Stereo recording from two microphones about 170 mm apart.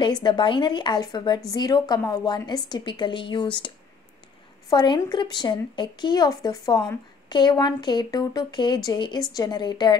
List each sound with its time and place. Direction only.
0.0 s speech: 25° left (ahead or behind)
4.6 s speech: 25° left (ahead or behind)